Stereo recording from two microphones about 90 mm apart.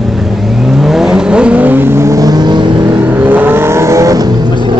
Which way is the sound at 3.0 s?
20° right (ahead or behind).